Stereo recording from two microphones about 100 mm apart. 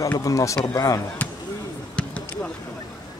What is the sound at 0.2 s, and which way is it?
Speech, 35° left (ahead or behind).